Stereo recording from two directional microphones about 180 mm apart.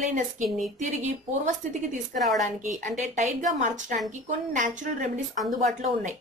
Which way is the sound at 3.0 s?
40° right (ahead or behind).